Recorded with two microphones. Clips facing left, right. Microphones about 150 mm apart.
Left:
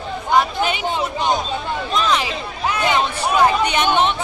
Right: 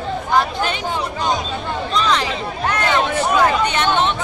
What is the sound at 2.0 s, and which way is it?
Speech, 10° left (ahead or behind).